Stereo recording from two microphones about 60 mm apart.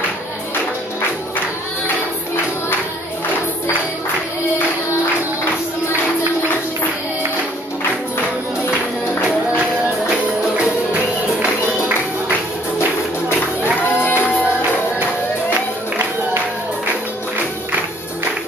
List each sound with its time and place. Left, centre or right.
10.0 s music: right
14.0 s music: left